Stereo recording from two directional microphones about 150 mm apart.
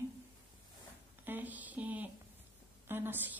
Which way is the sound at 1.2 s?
10° right (ahead or behind).